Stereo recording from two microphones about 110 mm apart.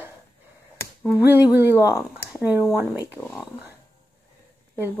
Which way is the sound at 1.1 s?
15° right (ahead or behind).